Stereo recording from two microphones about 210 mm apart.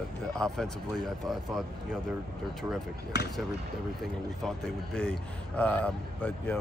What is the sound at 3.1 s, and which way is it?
Speech, 50° left (ahead or behind).